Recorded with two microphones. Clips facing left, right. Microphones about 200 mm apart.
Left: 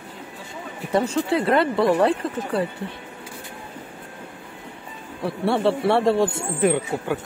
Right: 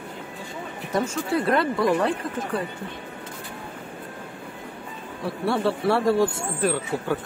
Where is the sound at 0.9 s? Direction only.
30° left (ahead or behind).